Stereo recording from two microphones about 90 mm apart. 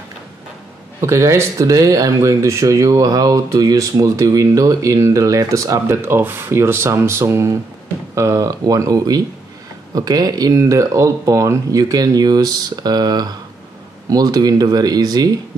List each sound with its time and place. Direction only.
1.0 s speech: 30° right (ahead or behind)
6.0 s speech: 25° right (ahead or behind); by 15.3 s 45° right (ahead or behind)